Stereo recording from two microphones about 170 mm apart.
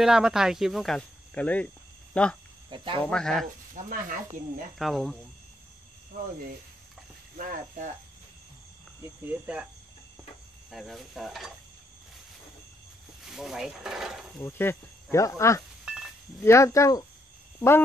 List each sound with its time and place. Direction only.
0.0 s speech: 5° right (ahead or behind)
2.7 s speech: 30° right (ahead or behind)
3.0 s speech: 5° left (ahead or behind)
3.7 s speech: 50° right (ahead or behind)
4.7 s speech: centre (ahead or behind)
7.3 s speech: 50° right (ahead or behind)
9.2 s speech: 10° right (ahead or behind)
10.7 s speech: centre (ahead or behind)
13.3 s speech: centre (ahead or behind)
14.4 s speech: 15° left (ahead or behind)
15.9 s a sound: 5° right (ahead or behind)
16.4 s speech: 15° left (ahead or behind)